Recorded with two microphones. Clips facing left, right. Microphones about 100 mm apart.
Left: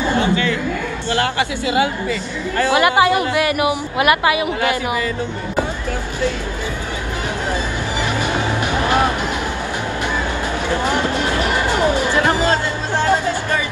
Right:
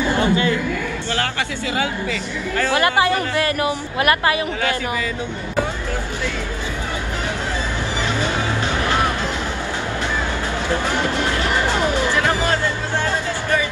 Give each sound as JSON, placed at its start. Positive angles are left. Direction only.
{"t": 0.0, "sound": "a sound", "side_deg": 20}
{"t": 1.1, "sound": "speech", "side_deg": 25}
{"t": 8.2, "sound": "music", "side_deg": 20}
{"t": 10.7, "sound": "music", "side_deg": 20}